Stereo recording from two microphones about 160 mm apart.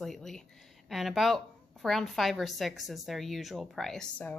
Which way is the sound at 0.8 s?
Centre (ahead or behind).